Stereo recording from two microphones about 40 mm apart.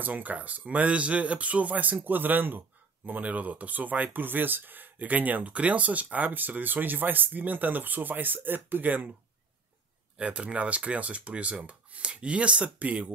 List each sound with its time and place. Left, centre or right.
0.0 s speech: right
2.0 s speech: right
3.1 s speech: right
10.1 s speech: right